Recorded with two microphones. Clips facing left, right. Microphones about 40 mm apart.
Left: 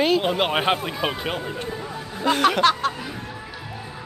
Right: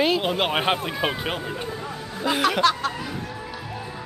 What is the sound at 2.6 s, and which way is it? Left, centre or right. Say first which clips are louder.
Speech: left 2 dB; left.